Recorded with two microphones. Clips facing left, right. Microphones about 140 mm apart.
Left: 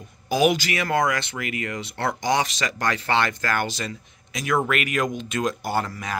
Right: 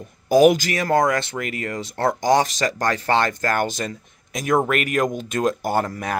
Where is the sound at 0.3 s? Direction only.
40° right (ahead or behind).